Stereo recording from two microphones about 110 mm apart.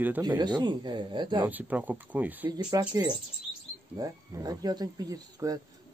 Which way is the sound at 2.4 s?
40° right (ahead or behind).